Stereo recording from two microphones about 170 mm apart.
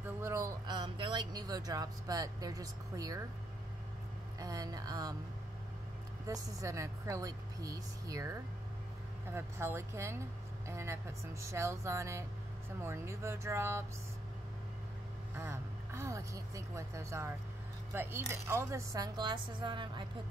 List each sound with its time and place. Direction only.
0.0 s speech: 15° right (ahead or behind)
4.4 s a woman's voice: 20° right (ahead or behind)
6.2 s a woman's voice: 20° right (ahead or behind)
15.3 s a woman's voice: 15° right (ahead or behind)